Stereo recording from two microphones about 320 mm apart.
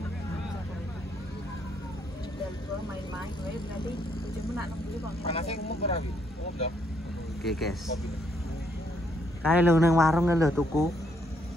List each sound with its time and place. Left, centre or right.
5.2 s speech: centre
7.4 s speech: centre
9.4 s a man's voice: centre